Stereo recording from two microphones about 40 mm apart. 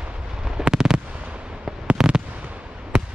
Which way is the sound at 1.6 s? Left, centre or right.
Centre.